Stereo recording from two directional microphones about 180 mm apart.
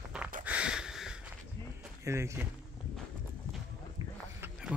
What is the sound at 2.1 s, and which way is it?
Speech, 15° right (ahead or behind).